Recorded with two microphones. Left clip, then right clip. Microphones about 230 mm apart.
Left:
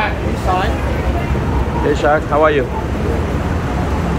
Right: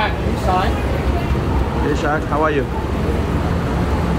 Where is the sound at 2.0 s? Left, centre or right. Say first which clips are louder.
Left 7 dB; centre.